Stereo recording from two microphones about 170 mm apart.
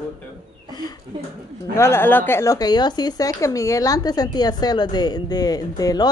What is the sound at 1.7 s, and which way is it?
Speech, 15° left (ahead or behind).